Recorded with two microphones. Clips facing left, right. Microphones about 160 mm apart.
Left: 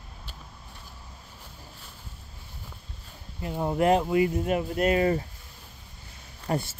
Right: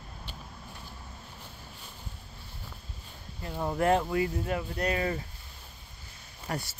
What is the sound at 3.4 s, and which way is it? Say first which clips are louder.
Speech: left 4 dB; 15° left (ahead or behind).